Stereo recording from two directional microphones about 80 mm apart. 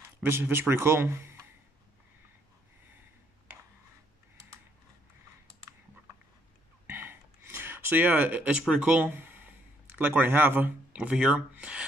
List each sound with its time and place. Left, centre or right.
0.2 s speech: right
6.9 s a sound: right
11.0 s speech: centre